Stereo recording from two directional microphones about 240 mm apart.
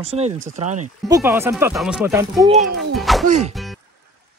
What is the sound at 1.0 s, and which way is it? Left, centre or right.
Speech, centre.